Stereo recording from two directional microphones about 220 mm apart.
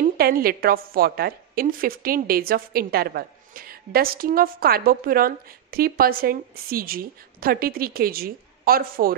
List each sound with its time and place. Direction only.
0.0 s a woman's voice: 40° right (ahead or behind)